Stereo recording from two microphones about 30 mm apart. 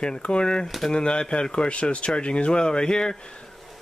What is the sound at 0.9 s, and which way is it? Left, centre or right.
Speech, left.